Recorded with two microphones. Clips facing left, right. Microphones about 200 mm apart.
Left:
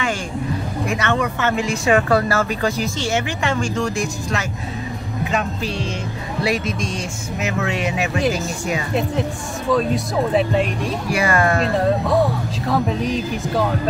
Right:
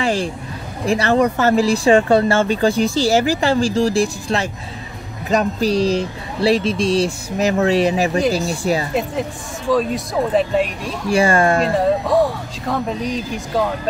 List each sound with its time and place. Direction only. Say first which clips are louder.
0.0 s speech: right 3 dB; 35° right (ahead or behind)
9.7 s speech: right 1 dB; centre (ahead or behind)
11.1 s speech: right 5 dB; 30° right (ahead or behind)
11.6 s speech: right 1 dB; centre (ahead or behind)